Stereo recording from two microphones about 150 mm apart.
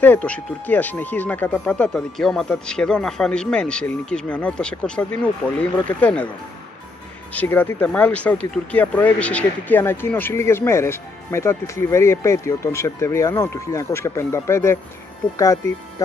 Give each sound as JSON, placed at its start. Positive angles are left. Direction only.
{"t": 0.0, "sound": "speech", "side_deg": 10}
{"t": 7.3, "sound": "speech", "side_deg": 15}